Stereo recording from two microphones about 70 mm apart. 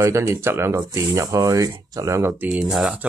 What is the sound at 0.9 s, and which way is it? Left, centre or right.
Speech, right.